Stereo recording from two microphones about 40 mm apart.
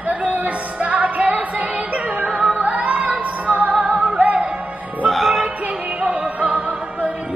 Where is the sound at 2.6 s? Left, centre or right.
Right.